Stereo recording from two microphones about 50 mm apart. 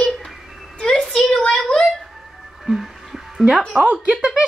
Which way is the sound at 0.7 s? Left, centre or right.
Centre.